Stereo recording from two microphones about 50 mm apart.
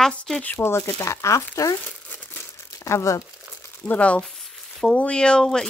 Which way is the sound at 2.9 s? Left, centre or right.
Left.